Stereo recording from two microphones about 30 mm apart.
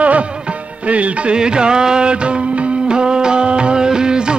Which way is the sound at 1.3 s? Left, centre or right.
Right.